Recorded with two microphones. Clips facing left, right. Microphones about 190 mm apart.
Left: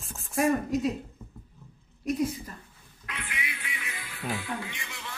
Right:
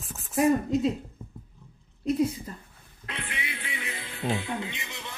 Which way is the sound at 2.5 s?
25° right (ahead or behind).